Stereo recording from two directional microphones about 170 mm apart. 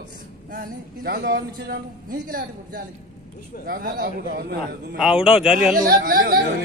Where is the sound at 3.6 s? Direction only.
60° right (ahead or behind).